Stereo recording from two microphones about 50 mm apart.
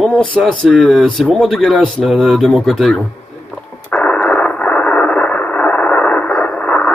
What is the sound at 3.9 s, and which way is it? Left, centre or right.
Radio, centre.